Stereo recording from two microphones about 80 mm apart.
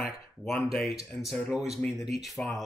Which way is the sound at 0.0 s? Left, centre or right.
Centre.